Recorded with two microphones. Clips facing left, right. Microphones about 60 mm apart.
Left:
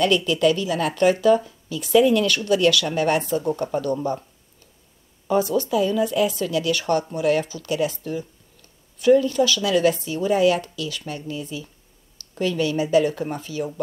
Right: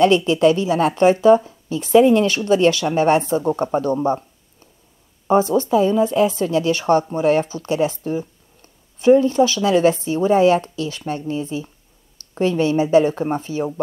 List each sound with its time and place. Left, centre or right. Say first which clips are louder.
0.0 s speech: right 5 dB; right